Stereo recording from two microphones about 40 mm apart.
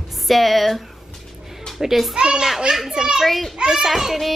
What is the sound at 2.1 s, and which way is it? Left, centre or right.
A child's voice, right.